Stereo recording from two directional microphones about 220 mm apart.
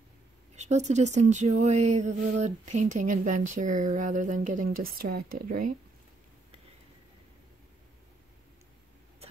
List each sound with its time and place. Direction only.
0.6 s speech: 30° right (ahead or behind)